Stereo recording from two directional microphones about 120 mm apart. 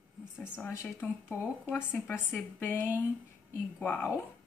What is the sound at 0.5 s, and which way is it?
Speech, 20° left (ahead or behind).